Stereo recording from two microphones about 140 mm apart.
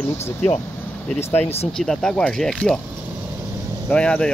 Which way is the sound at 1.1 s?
15° left (ahead or behind).